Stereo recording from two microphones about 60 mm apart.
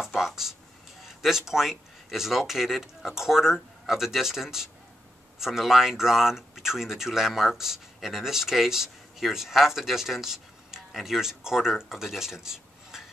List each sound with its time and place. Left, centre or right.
0.1 s speech: centre